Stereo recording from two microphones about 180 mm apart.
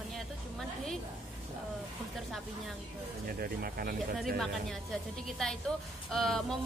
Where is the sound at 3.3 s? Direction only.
55° right (ahead or behind).